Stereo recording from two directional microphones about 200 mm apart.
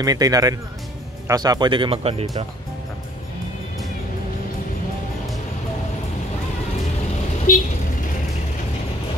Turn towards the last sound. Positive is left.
turn(degrees=45)  # may be behind; listen again after turning